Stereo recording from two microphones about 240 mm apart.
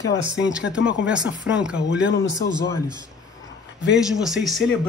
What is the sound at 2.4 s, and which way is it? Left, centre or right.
Speech, left.